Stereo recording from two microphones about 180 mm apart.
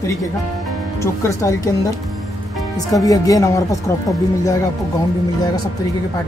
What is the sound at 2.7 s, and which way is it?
Speech, 20° left (ahead or behind).